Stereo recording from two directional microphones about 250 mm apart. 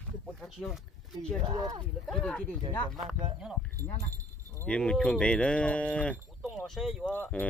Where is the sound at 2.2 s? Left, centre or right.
Centre.